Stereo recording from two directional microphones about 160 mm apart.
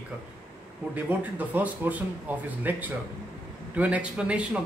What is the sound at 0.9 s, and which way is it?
Speech, 10° right (ahead or behind).